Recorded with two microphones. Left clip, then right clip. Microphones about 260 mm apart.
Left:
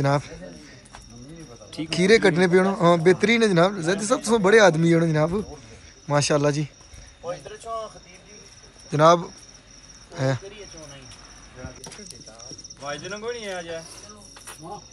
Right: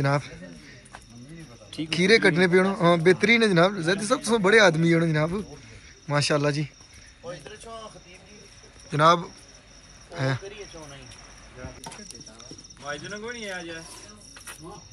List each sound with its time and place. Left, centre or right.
0.0 s speech: centre
1.7 s speech: centre
8.9 s speech: centre
12.8 s speech: left